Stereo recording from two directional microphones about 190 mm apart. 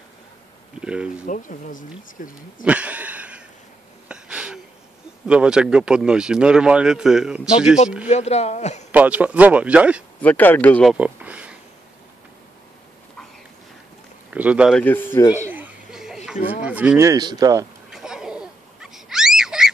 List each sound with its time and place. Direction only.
0.7 s speech: 5° right (ahead or behind)
1.2 s speech: 45° left (ahead or behind)
2.6 s a sound: 5° right (ahead or behind)
5.2 s speech: 5° right (ahead or behind)
8.1 s speech: 35° left (ahead or behind)
8.9 s speech: 10° right (ahead or behind)
10.2 s speech: 10° left (ahead or behind)
10.9 s a sound: 5° right (ahead or behind)
14.3 s speech: 5° right (ahead or behind)
14.8 s speech: 10° left (ahead or behind)
15.5 s a sound: 5° right (ahead or behind)
16.6 s speech: 5° right (ahead or behind)
17.1 s speech: 20° right (ahead or behind)
17.9 s a sound: 5° right (ahead or behind)